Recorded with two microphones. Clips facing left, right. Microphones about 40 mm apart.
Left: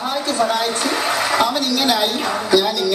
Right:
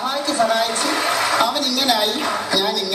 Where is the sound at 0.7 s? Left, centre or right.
Left.